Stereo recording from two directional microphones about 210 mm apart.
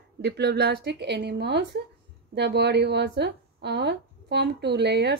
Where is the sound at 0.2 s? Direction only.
50° right (ahead or behind).